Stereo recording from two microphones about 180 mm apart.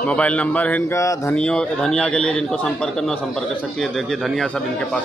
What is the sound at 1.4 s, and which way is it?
A man's voice, 5° left (ahead or behind).